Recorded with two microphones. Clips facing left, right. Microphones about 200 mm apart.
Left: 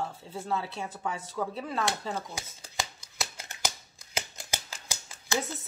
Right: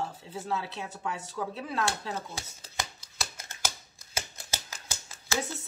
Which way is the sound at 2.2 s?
15° left (ahead or behind).